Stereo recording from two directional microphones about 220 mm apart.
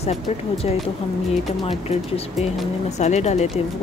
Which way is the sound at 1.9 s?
30° left (ahead or behind).